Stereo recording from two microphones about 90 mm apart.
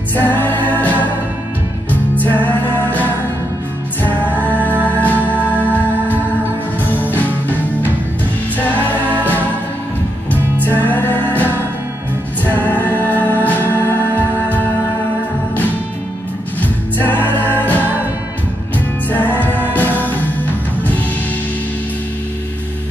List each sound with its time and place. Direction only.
0.1 s music: 20° left (ahead or behind)
10.3 s music: 20° left (ahead or behind)
16.6 s music: 20° left (ahead or behind)
19.1 s music: 20° left (ahead or behind)